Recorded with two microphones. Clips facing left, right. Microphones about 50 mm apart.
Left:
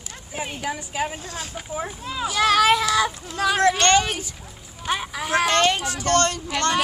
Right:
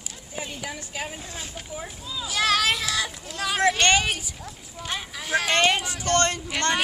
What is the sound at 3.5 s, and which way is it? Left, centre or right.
Speech, centre.